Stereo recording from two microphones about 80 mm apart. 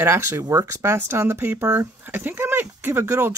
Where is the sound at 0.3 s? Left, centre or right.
Right.